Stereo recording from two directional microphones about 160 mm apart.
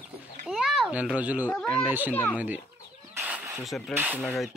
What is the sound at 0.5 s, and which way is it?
Speech, centre (ahead or behind).